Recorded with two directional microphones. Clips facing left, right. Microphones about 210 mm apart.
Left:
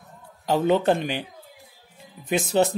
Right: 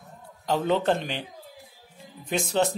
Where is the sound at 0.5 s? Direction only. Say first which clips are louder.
Left 3 dB; 5° left (ahead or behind).